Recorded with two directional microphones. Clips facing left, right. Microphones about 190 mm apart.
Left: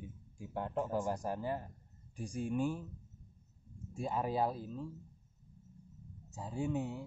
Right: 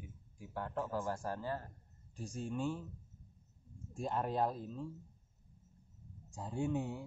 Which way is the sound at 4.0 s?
5° left (ahead or behind).